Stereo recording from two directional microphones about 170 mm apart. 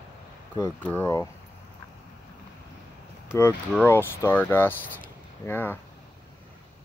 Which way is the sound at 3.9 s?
15° left (ahead or behind).